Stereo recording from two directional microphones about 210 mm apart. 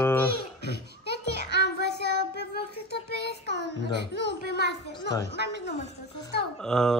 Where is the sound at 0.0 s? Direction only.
10° left (ahead or behind).